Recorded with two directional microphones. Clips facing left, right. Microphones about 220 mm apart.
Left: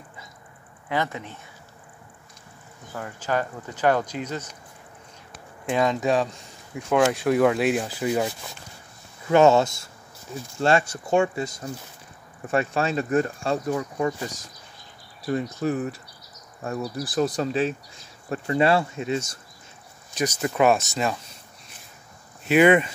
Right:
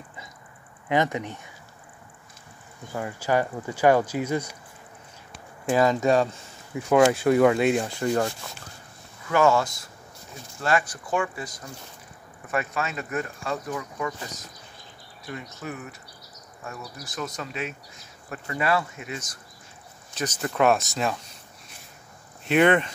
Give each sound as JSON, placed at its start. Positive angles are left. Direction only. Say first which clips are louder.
{"t": 0.8, "sound": "speech", "louder": "right 4 dB", "side_deg": -15}
{"t": 2.9, "sound": "speech", "louder": "right 2 dB", "side_deg": -10}
{"t": 9.3, "sound": "speech", "louder": "left 4 dB", "side_deg": 25}
{"t": 15.2, "sound": "speech", "louder": "left 11 dB", "side_deg": 35}
{"t": 20.2, "sound": "speech", "louder": "left 3 dB", "side_deg": 10}
{"t": 22.5, "sound": "speech", "louder": "left 3 dB", "side_deg": 5}